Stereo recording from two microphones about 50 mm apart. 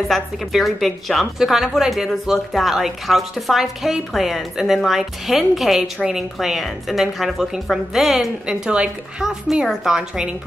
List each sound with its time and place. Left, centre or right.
0.1 s a woman's voice: centre
8.5 s a woman's voice: centre